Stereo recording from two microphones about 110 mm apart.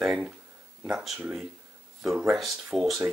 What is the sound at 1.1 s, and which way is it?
Speech, 15° right (ahead or behind).